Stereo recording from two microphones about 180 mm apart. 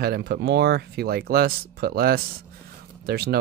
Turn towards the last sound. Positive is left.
turn(degrees=-60)  # may be behind; listen again after turning